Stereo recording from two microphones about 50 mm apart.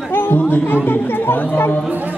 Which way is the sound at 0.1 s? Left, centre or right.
Left.